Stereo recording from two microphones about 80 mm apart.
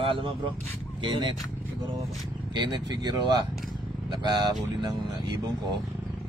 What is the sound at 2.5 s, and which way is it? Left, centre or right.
Speech, right.